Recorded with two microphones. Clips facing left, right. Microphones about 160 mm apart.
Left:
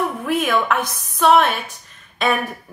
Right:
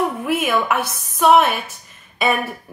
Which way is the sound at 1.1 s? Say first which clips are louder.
Right 1 dB; 5° right (ahead or behind).